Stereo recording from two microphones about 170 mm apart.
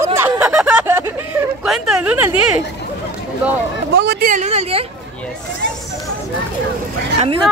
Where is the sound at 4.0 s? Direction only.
60° right (ahead or behind); by 4.8 s 40° right (ahead or behind).